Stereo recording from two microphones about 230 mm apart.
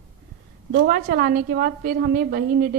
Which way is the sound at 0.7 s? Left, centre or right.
Right.